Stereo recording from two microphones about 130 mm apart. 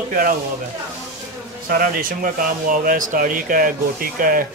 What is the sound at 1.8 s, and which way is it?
Speech, 90° right.